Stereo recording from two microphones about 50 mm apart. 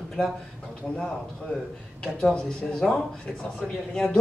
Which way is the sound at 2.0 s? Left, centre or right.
Centre.